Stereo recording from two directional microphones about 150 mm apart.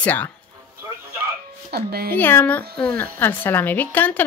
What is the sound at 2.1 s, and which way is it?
Speech, 15° left (ahead or behind).